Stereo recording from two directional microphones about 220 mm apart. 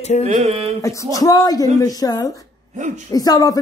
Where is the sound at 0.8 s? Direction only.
15° left (ahead or behind).